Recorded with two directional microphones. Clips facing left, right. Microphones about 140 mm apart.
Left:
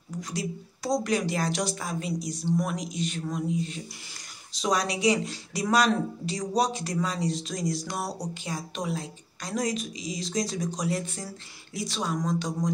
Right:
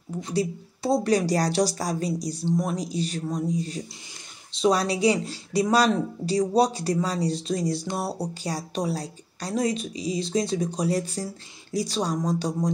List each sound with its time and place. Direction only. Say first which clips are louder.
0.2 s speech: right 7 dB; 30° right (ahead or behind)